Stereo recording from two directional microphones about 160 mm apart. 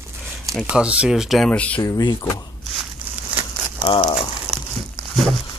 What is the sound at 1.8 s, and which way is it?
Speech, 25° left (ahead or behind).